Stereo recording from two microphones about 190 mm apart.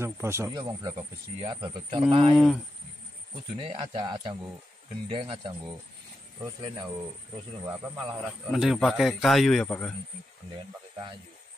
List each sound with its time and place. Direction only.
0.0 s speech: 15° right (ahead or behind); by 2.3 s 30° right (ahead or behind)
2.3 s a man's voice: centre (ahead or behind)
3.5 s speech: 30° right (ahead or behind)
8.2 s a man's voice: centre (ahead or behind)